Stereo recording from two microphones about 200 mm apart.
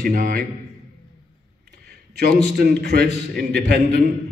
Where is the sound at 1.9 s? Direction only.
50° right (ahead or behind).